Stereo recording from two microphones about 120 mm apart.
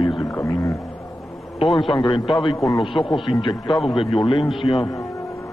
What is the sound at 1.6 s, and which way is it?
Speech, centre (ahead or behind).